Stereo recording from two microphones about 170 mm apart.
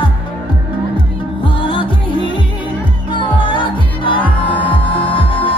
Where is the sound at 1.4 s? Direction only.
30° left (ahead or behind).